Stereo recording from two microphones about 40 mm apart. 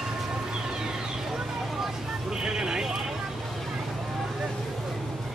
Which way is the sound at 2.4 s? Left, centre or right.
Centre.